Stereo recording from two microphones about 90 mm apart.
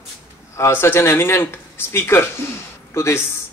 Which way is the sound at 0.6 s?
30° left (ahead or behind).